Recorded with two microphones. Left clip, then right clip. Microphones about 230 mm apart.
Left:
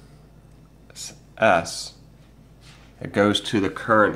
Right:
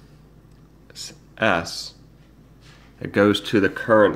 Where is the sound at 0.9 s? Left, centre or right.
Centre.